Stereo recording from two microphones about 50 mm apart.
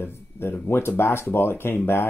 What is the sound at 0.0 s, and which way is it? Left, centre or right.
Speech, left.